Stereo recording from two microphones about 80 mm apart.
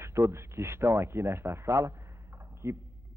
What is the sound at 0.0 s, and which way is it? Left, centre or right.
Speech, right.